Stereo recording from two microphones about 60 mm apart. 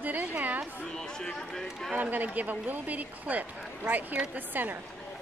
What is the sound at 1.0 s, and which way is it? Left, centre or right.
Speech, centre.